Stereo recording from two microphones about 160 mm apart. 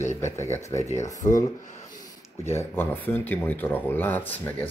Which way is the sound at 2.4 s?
15° left (ahead or behind).